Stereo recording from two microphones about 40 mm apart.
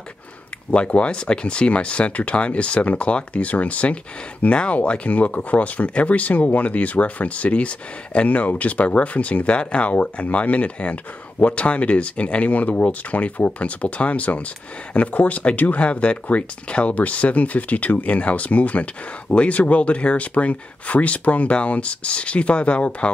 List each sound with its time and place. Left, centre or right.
0.7 s speech: left